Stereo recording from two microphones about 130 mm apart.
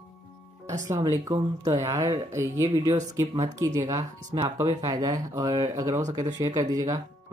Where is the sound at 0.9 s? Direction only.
25° right (ahead or behind).